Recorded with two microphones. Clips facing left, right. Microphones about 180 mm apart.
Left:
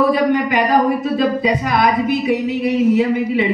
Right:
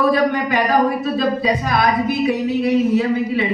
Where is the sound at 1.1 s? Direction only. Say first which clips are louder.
Left 2 dB; 15° left (ahead or behind).